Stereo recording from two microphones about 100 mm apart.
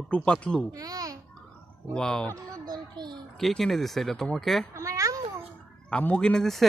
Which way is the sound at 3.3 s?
Centre (ahead or behind).